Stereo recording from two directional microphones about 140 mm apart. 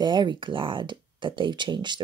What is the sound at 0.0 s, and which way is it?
Speech, 30° right (ahead or behind).